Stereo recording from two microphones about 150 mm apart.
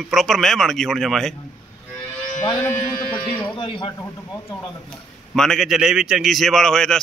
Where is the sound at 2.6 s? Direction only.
15° left (ahead or behind).